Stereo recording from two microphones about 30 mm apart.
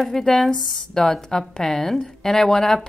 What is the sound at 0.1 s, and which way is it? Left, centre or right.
A woman's voice, centre.